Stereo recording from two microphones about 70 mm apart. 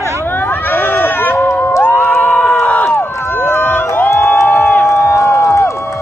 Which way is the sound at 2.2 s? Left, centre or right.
Centre.